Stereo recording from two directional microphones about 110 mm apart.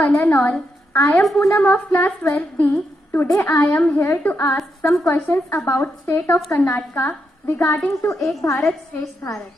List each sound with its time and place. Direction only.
0.3 s a woman's voice: 15° left (ahead or behind)
1.2 s a woman's voice: 5° left (ahead or behind)
8.2 s a woman's voice: centre (ahead or behind)
8.9 s a woman's voice: 25° left (ahead or behind)